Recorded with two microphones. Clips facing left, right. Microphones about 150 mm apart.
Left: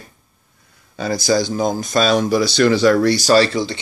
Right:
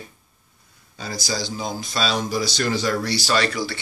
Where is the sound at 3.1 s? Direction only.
40° left (ahead or behind).